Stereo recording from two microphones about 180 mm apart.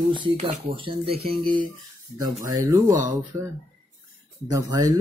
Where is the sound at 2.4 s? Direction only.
20° right (ahead or behind).